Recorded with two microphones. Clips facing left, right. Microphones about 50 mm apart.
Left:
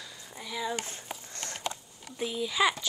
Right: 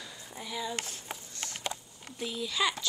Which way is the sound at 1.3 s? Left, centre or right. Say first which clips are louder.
Left 2 dB; left.